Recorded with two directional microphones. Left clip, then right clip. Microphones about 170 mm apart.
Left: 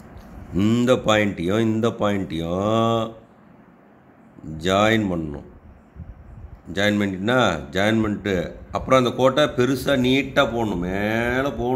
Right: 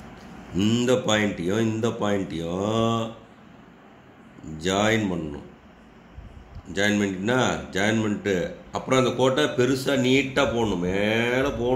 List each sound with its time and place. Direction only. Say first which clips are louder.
0.6 s a man's voice: left 3 dB; 70° left (ahead or behind)
4.6 s a man's voice: left 4 dB; 75° left (ahead or behind)
6.7 s a man's voice: left 2 dB; 70° left (ahead or behind)